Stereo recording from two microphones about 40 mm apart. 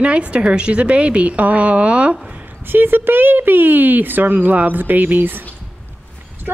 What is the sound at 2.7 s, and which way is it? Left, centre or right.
Speech, right.